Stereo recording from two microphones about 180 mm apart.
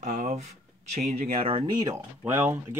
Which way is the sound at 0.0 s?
40° right (ahead or behind).